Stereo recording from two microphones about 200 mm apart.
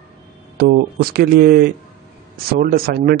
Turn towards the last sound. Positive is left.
turn(degrees=-50)  # may be behind; listen again after turning